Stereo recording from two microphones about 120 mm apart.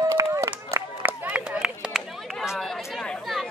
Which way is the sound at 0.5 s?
15° right (ahead or behind).